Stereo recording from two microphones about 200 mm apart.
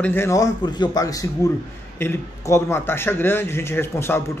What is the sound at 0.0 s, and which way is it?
A man's voice, 10° left (ahead or behind).